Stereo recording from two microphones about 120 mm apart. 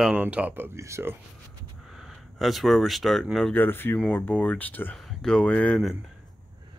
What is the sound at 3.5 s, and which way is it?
Speech, 15° left (ahead or behind).